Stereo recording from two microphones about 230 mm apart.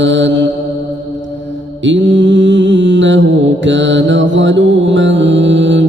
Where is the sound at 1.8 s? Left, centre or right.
Right.